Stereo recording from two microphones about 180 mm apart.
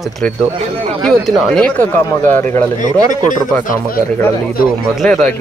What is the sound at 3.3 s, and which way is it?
Speech, 45° left (ahead or behind).